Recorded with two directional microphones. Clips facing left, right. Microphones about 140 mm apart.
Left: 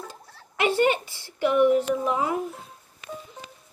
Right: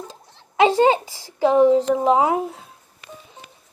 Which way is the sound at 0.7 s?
90° right.